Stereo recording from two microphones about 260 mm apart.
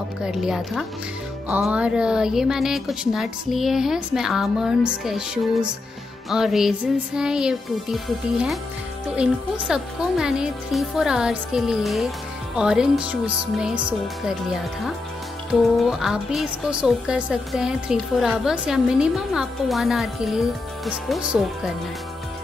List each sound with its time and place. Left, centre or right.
0.2 s a woman's voice: centre
15.8 s a woman's voice: centre